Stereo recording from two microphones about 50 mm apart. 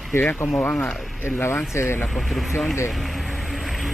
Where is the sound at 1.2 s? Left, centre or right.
Left.